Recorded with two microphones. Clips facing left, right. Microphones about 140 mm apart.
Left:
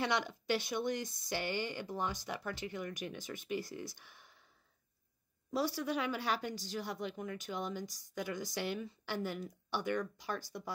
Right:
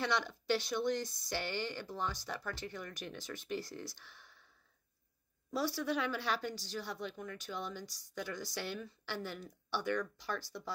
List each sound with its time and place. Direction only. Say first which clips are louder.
0.0 s speech: left 1 dB; 15° left (ahead or behind)
5.9 s speech: even; 10° left (ahead or behind)